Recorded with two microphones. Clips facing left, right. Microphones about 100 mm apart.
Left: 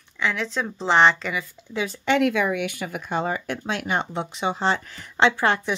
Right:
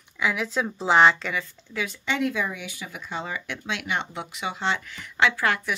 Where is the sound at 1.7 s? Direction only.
25° left (ahead or behind).